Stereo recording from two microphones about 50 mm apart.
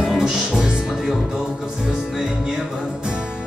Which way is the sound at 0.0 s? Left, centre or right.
Centre.